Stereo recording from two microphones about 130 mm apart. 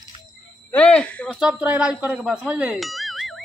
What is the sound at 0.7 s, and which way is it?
Speech, 10° left (ahead or behind).